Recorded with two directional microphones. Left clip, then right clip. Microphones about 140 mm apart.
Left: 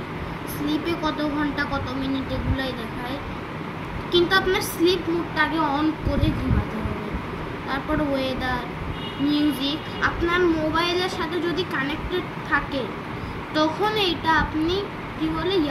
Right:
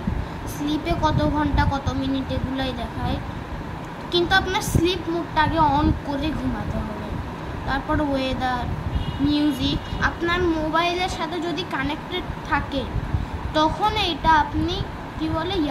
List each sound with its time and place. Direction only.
0.7 s a child's voice: 35° right (ahead or behind)
7.7 s a child's voice: 30° right (ahead or behind)